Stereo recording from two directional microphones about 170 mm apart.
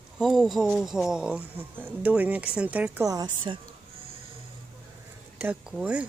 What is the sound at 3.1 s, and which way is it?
Speech, 20° right (ahead or behind).